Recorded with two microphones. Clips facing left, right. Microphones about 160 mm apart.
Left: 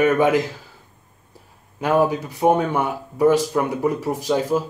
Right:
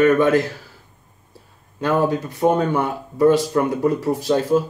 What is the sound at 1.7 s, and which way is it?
Speech, 10° left (ahead or behind).